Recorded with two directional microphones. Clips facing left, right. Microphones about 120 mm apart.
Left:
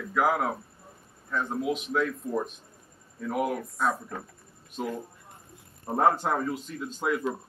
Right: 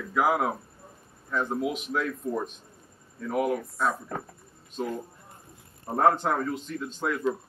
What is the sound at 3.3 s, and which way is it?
Speech, centre (ahead or behind).